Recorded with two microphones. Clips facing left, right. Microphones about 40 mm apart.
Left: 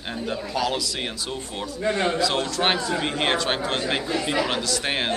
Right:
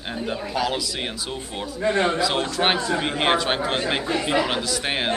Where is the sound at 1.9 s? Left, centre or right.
Right.